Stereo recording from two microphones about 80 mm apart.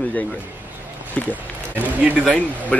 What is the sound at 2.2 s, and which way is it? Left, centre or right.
Speech, centre.